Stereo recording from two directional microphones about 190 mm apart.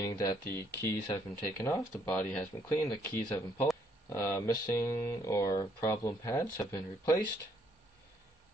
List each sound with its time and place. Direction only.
0.0 s speech: 20° left (ahead or behind)